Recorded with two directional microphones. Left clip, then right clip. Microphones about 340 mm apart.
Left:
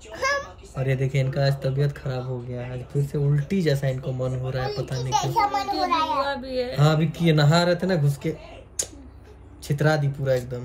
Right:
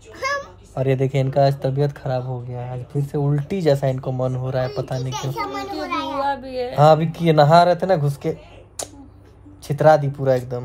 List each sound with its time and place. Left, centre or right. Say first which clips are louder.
0.1 s a sound: even; centre
0.7 s speech: right 6 dB; centre
5.1 s a child's voice: left 8 dB; centre
6.2 s speech: right 3 dB; centre
6.8 s speech: right 13 dB; centre
9.7 s speech: right 9 dB; centre